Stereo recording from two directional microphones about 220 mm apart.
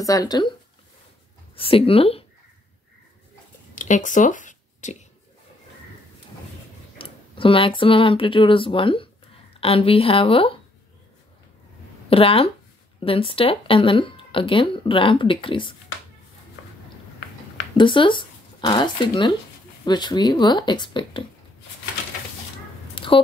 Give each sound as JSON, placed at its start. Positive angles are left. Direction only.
{"t": 0.0, "sound": "speech", "side_deg": 15}
{"t": 1.6, "sound": "speech", "side_deg": 25}
{"t": 3.7, "sound": "a sound", "side_deg": 35}
{"t": 7.0, "sound": "speech", "side_deg": 25}
{"t": 12.1, "sound": "speech", "side_deg": 25}
{"t": 17.7, "sound": "speech", "side_deg": 20}
{"t": 22.9, "sound": "a sound", "side_deg": 25}